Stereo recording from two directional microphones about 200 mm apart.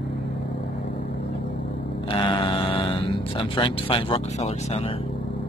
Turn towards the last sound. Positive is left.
turn(degrees=30)  # may be behind; listen again after turning